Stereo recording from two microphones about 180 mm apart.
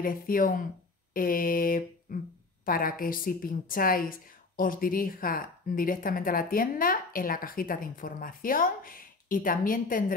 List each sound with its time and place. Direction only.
0.0 s a woman's voice: 50° left (ahead or behind)
1.1 s a sound: 50° left (ahead or behind)
2.6 s a woman's voice: 50° left (ahead or behind)